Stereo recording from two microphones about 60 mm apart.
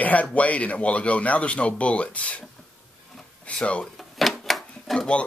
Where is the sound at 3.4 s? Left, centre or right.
Left.